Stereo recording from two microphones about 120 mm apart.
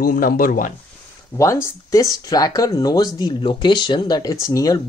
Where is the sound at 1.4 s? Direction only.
25° left (ahead or behind).